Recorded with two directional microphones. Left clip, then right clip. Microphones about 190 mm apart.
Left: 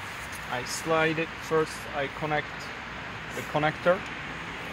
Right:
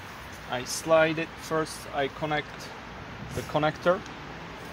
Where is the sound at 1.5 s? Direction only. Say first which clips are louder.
Left 3 dB; 40° right (ahead or behind).